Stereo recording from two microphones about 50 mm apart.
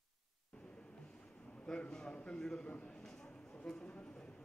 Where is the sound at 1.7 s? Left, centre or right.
Centre.